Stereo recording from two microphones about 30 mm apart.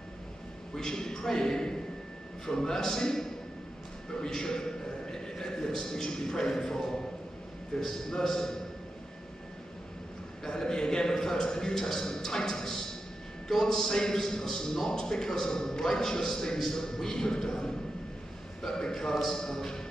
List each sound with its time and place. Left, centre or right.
0.7 s a man's voice: centre
10.5 s a man's voice: left